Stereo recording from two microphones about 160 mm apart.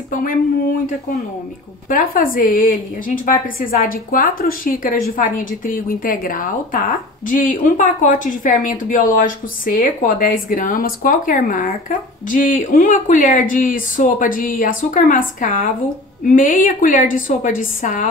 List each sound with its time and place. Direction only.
0.1 s speech: 60° left (ahead or behind)
1.9 s speech: 60° left (ahead or behind)